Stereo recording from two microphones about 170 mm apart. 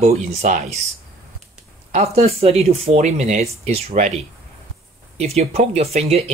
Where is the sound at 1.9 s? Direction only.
40° right (ahead or behind).